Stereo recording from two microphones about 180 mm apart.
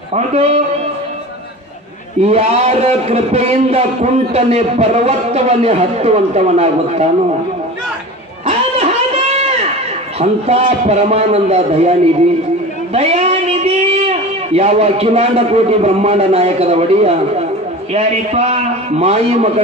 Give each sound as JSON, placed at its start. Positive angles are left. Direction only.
{"t": 0.1, "sound": "a man's voice", "side_deg": -35}
{"t": 2.2, "sound": "a man's voice", "side_deg": -35}
{"t": 8.5, "sound": "a sound", "side_deg": -35}
{"t": 10.2, "sound": "a man's voice", "side_deg": -35}
{"t": 12.9, "sound": "a man's voice", "side_deg": -35}